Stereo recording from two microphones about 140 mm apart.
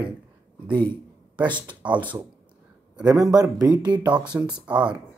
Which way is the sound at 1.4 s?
35° right (ahead or behind).